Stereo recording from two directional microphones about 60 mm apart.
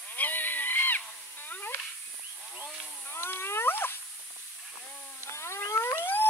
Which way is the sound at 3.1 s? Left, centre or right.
Left.